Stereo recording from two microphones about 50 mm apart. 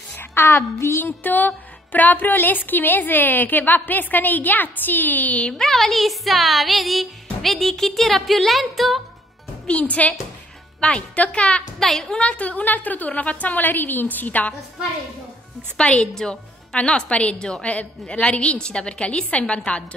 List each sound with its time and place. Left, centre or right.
0.1 s a woman's voice: left
1.2 s music: left
2.3 s a woman's voice: left
5.5 s speech: centre
9.7 s a woman's voice: left
11.8 s speech: centre
12.2 s a woman's voice: left
15.8 s a woman's voice: centre